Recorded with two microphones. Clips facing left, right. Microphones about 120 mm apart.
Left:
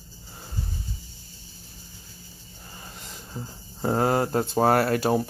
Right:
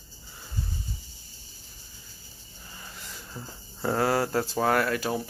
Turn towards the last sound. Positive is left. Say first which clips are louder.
# left 5 dB
turn(degrees=40)  # may be behind; listen again after turning